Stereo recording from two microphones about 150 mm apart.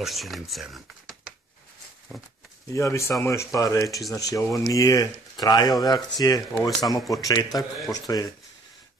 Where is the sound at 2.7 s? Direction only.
20° left (ahead or behind).